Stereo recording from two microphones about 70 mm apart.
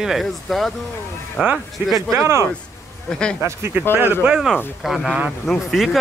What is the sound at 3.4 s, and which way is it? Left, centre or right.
Speech, right.